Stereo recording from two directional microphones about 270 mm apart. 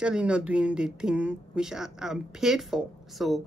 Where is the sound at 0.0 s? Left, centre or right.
Centre.